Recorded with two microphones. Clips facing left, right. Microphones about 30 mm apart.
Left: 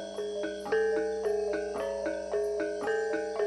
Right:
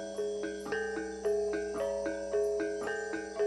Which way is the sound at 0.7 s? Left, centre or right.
Centre.